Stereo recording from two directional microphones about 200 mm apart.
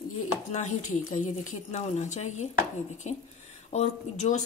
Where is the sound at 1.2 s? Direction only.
35° left (ahead or behind).